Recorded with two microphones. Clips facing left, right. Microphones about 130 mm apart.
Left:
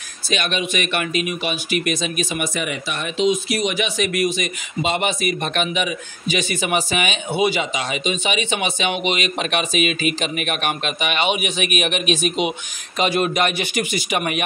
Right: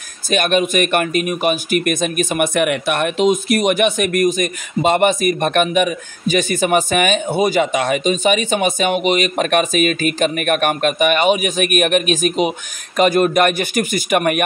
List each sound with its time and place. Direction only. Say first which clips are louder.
0.3 s speech: right 7 dB; 50° right (ahead or behind)